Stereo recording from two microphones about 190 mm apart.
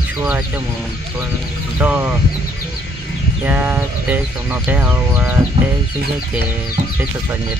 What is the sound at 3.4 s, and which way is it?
Speech, 10° right (ahead or behind).